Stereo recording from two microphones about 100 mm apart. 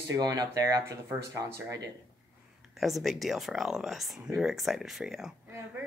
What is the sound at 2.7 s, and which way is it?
Speech, centre (ahead or behind).